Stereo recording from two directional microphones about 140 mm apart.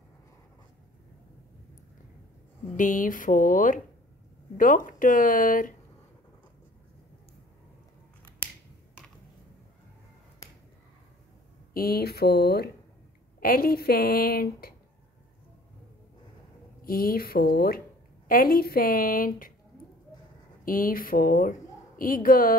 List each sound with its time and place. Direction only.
2.7 s speech: 70° left (ahead or behind)
11.7 s a woman's voice: 90° left
13.4 s a woman's voice: 90° left
16.8 s a woman's voice: 90° left
20.6 s speech: 85° left